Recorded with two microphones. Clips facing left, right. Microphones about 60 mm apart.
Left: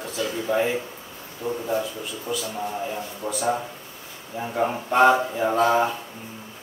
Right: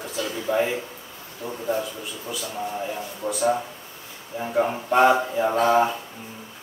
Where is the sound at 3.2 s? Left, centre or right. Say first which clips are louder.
Right 2 dB; left.